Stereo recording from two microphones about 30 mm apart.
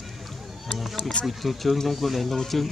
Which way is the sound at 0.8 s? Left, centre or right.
Centre.